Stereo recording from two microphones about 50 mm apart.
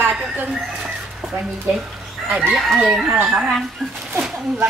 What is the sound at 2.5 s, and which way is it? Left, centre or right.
Speech, centre.